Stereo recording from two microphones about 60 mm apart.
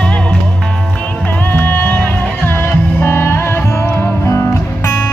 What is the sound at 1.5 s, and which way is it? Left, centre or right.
Music, left.